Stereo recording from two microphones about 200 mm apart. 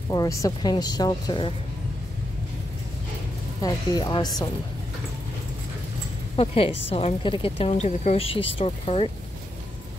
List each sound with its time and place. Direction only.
0.1 s a woman's voice: 15° left (ahead or behind)
3.6 s a woman's voice: 20° left (ahead or behind)
6.3 s a woman's voice: 30° left (ahead or behind)